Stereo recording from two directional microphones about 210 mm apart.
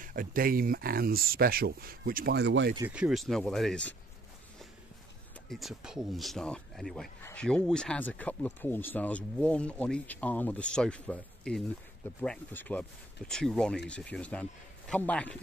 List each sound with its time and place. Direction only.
0.0 s speech: 40° right (ahead or behind); by 2.7 s 55° right (ahead or behind)
2.9 s speech: 5° right (ahead or behind)
5.5 s speech: centre (ahead or behind)